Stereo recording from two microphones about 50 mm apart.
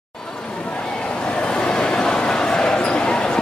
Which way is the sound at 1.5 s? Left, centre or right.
Centre.